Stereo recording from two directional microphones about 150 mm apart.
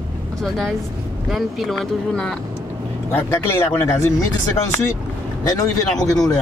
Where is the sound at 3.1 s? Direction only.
15° left (ahead or behind).